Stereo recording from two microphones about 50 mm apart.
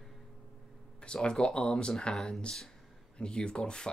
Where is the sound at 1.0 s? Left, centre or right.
Centre.